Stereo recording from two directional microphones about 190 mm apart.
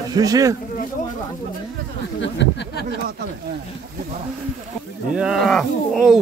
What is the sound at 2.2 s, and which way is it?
Speech, 70° left (ahead or behind).